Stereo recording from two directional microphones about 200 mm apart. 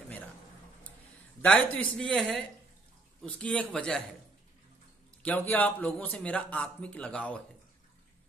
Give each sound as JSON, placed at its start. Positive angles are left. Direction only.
{"t": 1.4, "sound": "speech", "side_deg": 5}
{"t": 5.5, "sound": "a man's voice", "side_deg": 10}